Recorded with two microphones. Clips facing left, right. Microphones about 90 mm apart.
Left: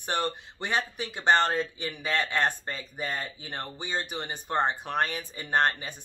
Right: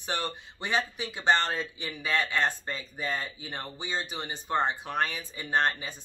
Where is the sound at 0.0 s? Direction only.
55° left (ahead or behind).